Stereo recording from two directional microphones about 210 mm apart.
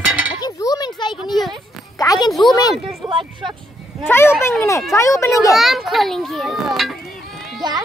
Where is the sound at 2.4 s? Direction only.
20° left (ahead or behind).